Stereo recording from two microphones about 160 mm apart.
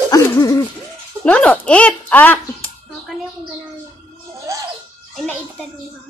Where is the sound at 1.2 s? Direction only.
5° left (ahead or behind).